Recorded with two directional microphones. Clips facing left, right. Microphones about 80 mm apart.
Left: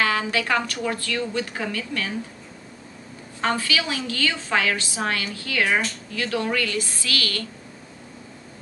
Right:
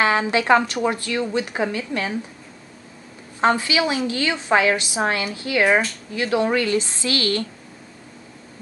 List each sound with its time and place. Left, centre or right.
0.0 s a woman's voice: right
3.3 s a woman's voice: right